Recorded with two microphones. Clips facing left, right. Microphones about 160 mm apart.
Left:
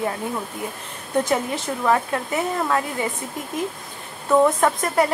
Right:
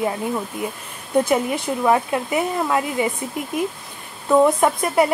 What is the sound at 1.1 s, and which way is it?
Speech, 10° right (ahead or behind).